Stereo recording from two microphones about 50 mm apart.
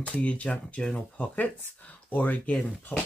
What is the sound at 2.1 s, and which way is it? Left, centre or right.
Speech, left.